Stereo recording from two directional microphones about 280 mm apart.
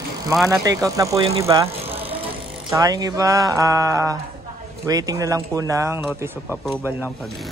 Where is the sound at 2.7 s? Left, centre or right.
Centre.